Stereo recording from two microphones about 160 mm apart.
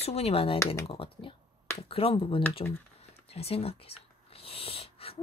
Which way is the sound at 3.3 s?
40° left (ahead or behind).